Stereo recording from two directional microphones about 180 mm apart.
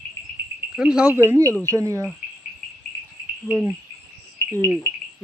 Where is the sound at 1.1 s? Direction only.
15° right (ahead or behind).